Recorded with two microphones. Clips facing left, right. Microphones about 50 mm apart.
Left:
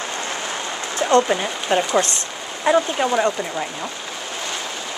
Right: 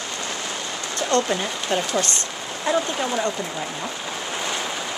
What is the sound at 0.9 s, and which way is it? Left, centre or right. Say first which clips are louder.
Speech: left 5 dB; centre.